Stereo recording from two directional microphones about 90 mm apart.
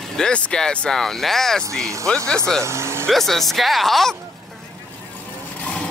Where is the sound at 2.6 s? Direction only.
35° right (ahead or behind).